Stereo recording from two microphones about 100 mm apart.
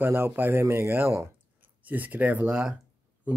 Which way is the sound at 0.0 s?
20° right (ahead or behind).